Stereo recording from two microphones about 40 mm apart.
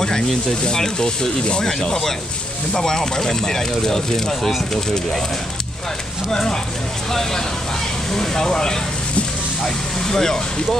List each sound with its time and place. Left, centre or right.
0.7 s speech: centre
6.3 s speech: centre